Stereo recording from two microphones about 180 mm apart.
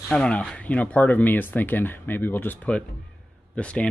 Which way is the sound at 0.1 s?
5° left (ahead or behind).